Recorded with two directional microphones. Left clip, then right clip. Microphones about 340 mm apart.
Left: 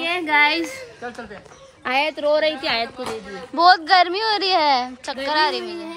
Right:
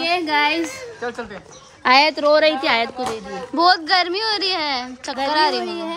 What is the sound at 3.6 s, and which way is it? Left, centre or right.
A woman's voice, centre.